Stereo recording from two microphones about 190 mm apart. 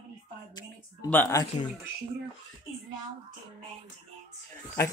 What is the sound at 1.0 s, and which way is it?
Speech, 10° left (ahead or behind).